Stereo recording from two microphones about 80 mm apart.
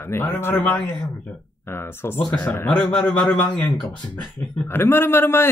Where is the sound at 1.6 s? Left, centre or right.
Left; by 4.0 s centre.